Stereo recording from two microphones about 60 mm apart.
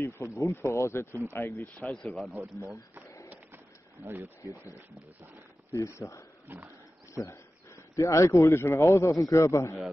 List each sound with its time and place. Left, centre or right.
0.0 s speech: left
1.8 s speech: centre
4.0 s speech: right
4.4 s speech: left
6.5 s wild animals: right
7.2 s a man's voice: left